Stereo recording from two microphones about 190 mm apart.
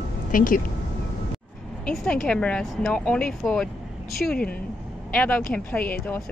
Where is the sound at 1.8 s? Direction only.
5° left (ahead or behind).